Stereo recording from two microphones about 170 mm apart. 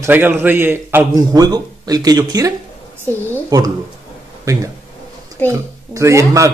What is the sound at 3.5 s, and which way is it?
A man's voice, 25° right (ahead or behind).